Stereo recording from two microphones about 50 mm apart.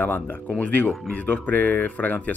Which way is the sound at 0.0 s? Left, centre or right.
Left.